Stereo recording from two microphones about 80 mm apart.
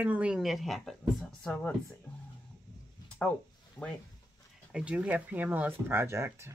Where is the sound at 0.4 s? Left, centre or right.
Centre.